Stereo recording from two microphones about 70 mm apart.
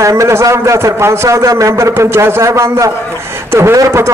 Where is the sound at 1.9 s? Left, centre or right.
Right.